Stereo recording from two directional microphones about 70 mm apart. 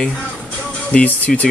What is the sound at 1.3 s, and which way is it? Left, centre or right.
Speech, centre.